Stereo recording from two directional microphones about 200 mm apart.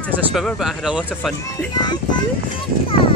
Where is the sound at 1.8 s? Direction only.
20° left (ahead or behind).